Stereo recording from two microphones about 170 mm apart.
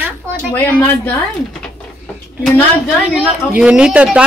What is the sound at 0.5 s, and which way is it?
Speech, 10° left (ahead or behind).